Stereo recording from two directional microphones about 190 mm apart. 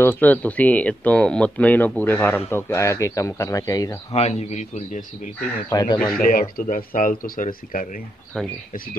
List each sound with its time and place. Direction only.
0.0 s speech: 10° left (ahead or behind)
4.1 s a man's voice: 35° left (ahead or behind)
5.7 s speech: 20° left (ahead or behind)
5.9 s speech: 5° left (ahead or behind)
6.5 s speech: 45° left (ahead or behind)
8.3 s speech: 5° left (ahead or behind)